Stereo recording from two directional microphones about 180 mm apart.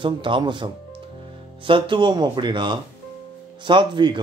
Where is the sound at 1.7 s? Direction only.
25° right (ahead or behind).